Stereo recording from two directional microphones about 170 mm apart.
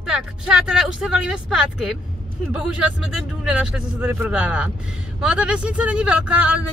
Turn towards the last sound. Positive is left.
turn(degrees=-10)  # may be behind; listen again after turning